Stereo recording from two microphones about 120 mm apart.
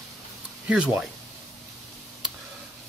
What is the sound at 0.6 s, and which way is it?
Speech, 10° right (ahead or behind).